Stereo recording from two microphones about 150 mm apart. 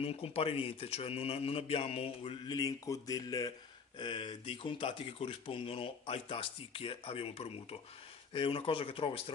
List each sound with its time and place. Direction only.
0.0 s speech: 40° left (ahead or behind)
2.5 s speech: 25° left (ahead or behind)